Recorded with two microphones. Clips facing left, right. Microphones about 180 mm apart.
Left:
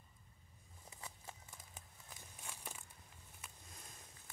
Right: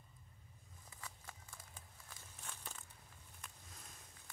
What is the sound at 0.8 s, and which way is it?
Walk, 20° left (ahead or behind).